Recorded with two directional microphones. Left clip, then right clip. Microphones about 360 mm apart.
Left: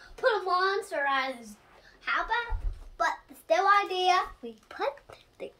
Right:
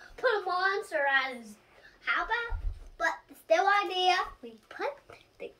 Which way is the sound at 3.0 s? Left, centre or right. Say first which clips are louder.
Left 2 dB; centre.